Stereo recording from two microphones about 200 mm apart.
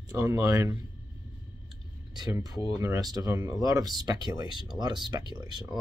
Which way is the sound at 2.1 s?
20° right (ahead or behind).